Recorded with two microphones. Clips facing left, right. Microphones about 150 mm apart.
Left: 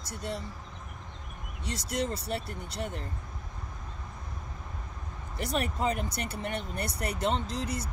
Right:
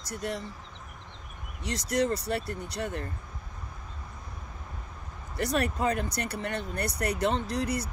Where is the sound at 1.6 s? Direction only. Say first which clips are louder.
Right 5 dB; 25° left (ahead or behind).